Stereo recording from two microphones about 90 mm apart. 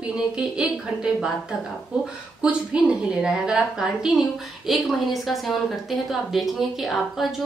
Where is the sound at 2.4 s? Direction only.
10° right (ahead or behind).